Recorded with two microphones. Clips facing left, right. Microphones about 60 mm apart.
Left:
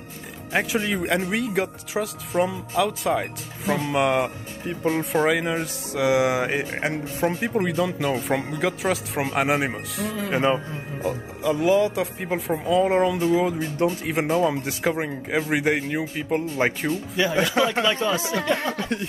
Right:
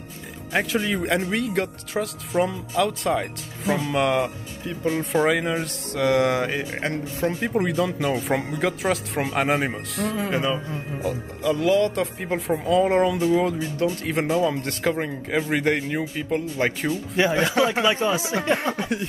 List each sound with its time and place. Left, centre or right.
0.7 s a man's voice: centre
4.6 s speech: left
5.1 s a man's voice: centre
7.4 s speech: centre
10.3 s speech: left
11.0 s a man's voice: centre
16.6 s speech: left
17.2 s speech: right
17.6 s speech: centre
17.8 s speech: centre